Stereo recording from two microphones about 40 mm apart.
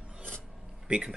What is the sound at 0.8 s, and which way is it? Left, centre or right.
Speech, right.